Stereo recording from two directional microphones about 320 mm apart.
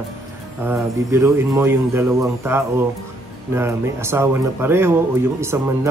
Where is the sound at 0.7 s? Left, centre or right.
Centre.